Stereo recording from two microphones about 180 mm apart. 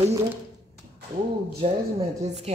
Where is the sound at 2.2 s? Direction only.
35° right (ahead or behind).